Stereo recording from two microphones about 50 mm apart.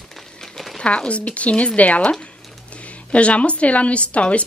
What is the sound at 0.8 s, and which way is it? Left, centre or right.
A woman's voice, left.